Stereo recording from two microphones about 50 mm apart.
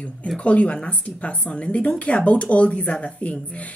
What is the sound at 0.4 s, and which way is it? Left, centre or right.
A woman's voice, left.